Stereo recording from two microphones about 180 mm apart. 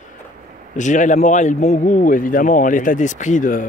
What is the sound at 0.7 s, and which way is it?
Speech, 45° left (ahead or behind).